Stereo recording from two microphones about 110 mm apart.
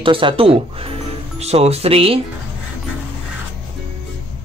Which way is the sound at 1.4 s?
70° right (ahead or behind).